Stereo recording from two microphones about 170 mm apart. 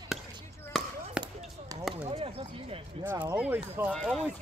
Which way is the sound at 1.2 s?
20° right (ahead or behind).